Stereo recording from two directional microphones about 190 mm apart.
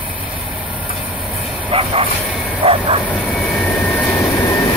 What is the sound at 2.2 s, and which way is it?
Bow-wow, 5° right (ahead or behind).